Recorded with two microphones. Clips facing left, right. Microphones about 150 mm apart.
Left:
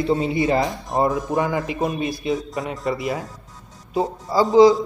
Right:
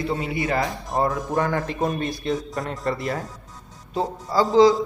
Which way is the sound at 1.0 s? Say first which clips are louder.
Left 2 dB; 15° left (ahead or behind).